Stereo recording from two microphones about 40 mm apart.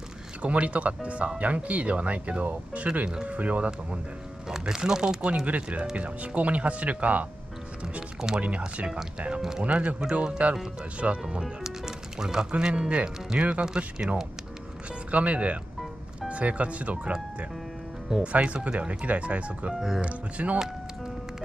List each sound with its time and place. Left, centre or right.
0.4 s speech: right
4.5 s speech: centre
5.2 s speech: right
8.4 s speech: right
11.4 s speech: centre; by 13.8 s right
13.9 s speech: centre
15.0 s speech: right